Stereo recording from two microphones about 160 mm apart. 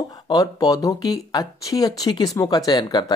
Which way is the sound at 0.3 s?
25° left (ahead or behind).